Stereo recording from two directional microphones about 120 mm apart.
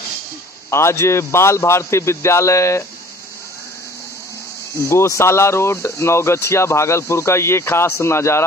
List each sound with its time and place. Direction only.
0.7 s speech: 25° left (ahead or behind)
4.7 s speech: 25° left (ahead or behind)